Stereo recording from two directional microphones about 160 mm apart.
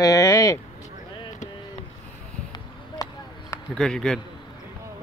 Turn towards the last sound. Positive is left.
turn(degrees=5)  # may be behind; listen again after turning